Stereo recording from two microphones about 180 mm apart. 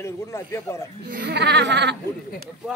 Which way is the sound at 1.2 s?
70° right (ahead or behind).